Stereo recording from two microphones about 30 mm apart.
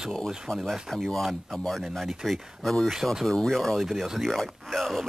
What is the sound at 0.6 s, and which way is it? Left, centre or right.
Speech, centre.